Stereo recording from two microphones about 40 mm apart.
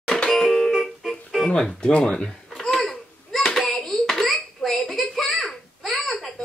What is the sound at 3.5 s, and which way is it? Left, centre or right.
Hands, centre.